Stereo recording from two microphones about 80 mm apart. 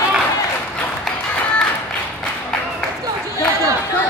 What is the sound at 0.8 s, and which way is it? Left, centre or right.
Music, centre.